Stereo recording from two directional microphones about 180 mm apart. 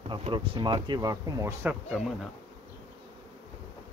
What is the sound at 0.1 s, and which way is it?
Speech, 25° right (ahead or behind).